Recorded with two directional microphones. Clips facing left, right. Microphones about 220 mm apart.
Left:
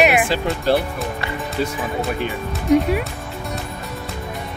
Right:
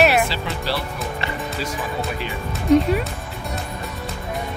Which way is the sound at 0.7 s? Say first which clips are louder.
Left 9 dB; 50° left (ahead or behind).